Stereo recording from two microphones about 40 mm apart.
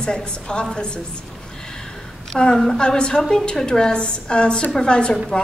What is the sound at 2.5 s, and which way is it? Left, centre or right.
A woman's voice, centre.